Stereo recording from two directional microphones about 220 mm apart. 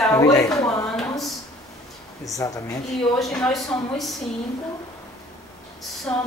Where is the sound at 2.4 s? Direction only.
15° left (ahead or behind).